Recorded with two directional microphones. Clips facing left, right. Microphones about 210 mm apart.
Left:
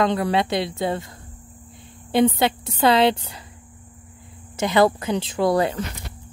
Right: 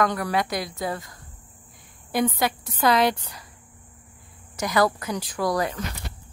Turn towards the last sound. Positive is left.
turn(degrees=25)  # may be behind; listen again after turning